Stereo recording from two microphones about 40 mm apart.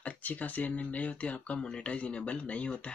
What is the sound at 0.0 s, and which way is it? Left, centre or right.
Speech, left.